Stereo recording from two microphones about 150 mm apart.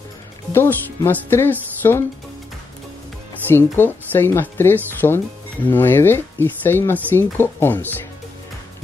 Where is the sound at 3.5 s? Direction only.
15° left (ahead or behind).